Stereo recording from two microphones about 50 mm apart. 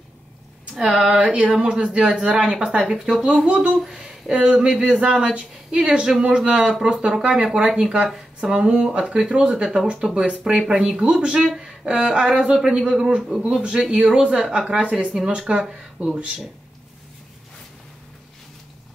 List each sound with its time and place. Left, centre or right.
0.7 s speech: centre
1.2 s a woman's voice: right
3.4 s a woman's voice: right
3.9 s a sound: centre
4.3 s a woman's voice: right
11.5 s a sound: centre
11.9 s speech: centre